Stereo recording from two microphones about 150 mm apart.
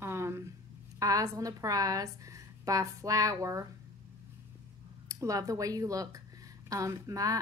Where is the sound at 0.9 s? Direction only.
25° right (ahead or behind).